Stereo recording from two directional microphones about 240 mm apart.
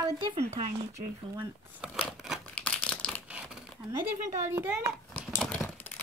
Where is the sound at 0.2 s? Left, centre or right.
Right.